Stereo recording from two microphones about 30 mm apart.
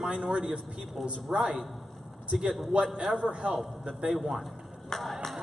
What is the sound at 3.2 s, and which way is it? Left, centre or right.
Speech, right.